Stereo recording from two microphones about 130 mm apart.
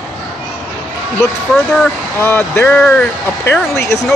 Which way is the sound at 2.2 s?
15° left (ahead or behind).